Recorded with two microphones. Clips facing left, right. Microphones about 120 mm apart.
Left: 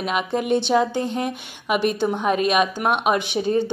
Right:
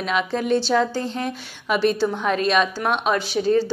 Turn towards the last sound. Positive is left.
turn(degrees=20)  # may be behind; listen again after turning